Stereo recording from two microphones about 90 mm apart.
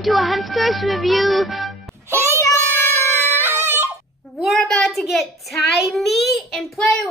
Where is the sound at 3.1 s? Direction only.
25° left (ahead or behind).